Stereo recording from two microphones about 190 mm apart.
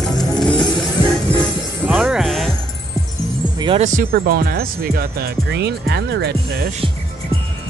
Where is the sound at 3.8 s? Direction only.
45° right (ahead or behind).